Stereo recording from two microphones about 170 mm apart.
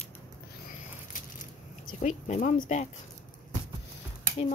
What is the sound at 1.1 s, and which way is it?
Crushing, 50° left (ahead or behind).